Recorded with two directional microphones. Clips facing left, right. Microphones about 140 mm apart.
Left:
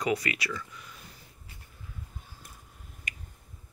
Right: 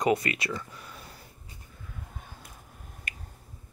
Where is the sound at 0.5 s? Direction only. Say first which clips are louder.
Right 2 dB; 40° right (ahead or behind).